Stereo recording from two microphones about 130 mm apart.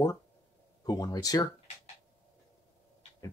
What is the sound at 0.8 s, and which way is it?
Speech, 30° left (ahead or behind).